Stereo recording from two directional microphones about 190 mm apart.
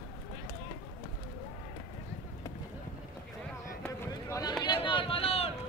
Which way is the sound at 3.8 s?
15° left (ahead or behind).